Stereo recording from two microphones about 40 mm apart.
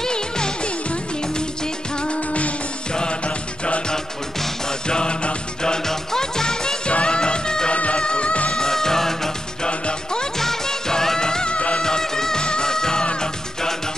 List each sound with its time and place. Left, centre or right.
0.0 s music: centre
2.0 s music: left
2.9 s music: left
3.9 s music: centre
7.7 s music: left; by 9.7 s centre
9.7 s music: left
10.4 s music: centre; by 11.8 s left
11.8 s music: centre